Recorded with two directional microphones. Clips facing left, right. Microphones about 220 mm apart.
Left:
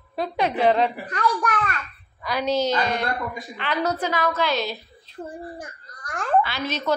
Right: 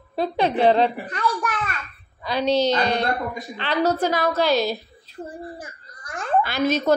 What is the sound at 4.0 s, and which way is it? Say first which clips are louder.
Speech: right 3 dB; 40° right (ahead or behind).